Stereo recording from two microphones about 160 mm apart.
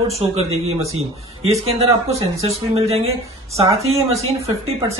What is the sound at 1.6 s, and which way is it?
A woman's voice, 40° right (ahead or behind).